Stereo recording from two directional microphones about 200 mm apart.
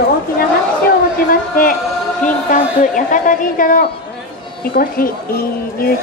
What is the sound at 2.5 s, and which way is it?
A woman's voice, 40° left (ahead or behind).